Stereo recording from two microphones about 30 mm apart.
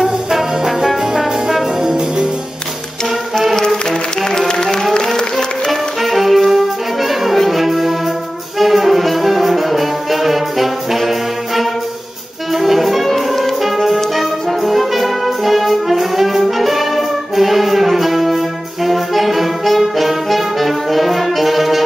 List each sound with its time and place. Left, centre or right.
0.0 s brass instrument: centre
1.8 s music: right
4.2 s music: left
5.7 s brass instrument: centre
12.5 s music: centre
13.7 s brass instrument: centre